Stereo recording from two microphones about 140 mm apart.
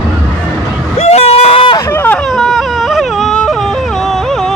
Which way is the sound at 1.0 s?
50° left (ahead or behind).